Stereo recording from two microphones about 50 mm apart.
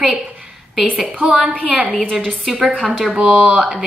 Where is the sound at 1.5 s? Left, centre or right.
Right.